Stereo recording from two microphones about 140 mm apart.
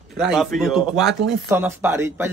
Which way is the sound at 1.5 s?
15° right (ahead or behind).